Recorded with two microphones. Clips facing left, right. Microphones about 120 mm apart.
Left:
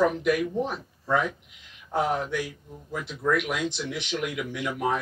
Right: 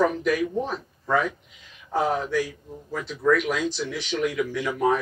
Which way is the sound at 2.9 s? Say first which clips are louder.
Right 4 dB; 15° left (ahead or behind).